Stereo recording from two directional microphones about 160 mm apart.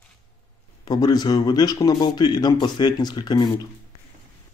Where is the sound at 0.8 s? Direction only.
25° left (ahead or behind).